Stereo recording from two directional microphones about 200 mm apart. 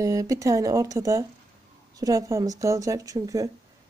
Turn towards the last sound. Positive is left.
turn(degrees=-15)  # may be behind; listen again after turning